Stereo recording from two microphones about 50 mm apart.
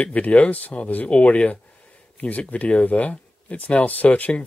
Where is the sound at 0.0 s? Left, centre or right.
Left.